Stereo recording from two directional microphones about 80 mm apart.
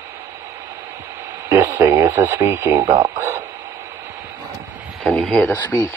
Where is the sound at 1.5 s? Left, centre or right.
Right.